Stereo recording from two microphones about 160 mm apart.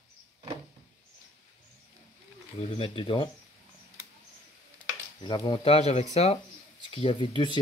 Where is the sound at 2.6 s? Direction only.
35° left (ahead or behind).